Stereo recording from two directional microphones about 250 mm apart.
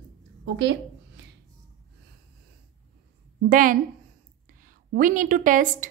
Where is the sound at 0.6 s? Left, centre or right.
Right.